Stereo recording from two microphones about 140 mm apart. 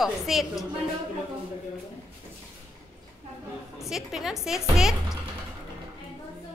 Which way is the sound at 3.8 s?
5° right (ahead or behind).